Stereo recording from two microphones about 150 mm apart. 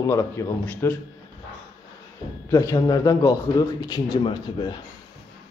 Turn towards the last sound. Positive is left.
turn(degrees=30)  # may be behind; listen again after turning